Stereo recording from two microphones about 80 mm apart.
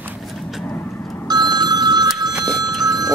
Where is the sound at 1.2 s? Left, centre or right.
Right.